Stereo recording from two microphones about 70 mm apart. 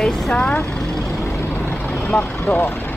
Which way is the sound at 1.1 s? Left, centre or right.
Left.